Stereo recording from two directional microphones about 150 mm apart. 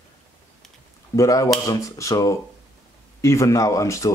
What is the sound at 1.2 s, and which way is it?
Speech, 25° left (ahead or behind).